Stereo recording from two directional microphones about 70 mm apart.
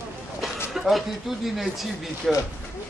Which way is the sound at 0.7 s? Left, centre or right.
Centre.